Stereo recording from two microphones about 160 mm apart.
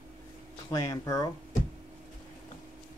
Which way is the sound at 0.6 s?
20° left (ahead or behind).